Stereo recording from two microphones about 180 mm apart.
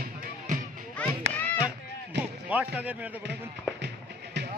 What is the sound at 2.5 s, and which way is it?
Speech, 10° right (ahead or behind).